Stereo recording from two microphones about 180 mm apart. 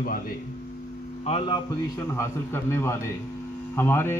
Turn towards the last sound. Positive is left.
turn(degrees=15)  # may be behind; listen again after turning